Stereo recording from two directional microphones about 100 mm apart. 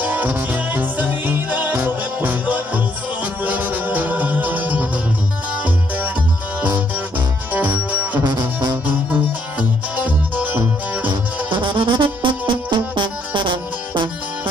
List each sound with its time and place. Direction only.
0.0 s music: 15° right (ahead or behind)
7.6 s music: 15° right (ahead or behind)
8.2 s music: 45° right (ahead or behind)
9.6 s music: 15° right (ahead or behind)
11.1 s music: 55° right (ahead or behind)